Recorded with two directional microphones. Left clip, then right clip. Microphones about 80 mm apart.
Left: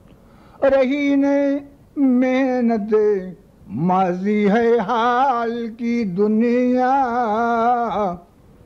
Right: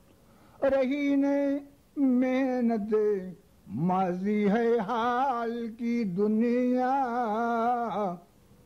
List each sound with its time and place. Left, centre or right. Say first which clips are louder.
0.6 s female singing: left 10 dB; left